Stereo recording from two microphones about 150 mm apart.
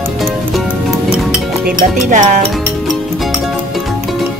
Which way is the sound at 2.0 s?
55° right (ahead or behind).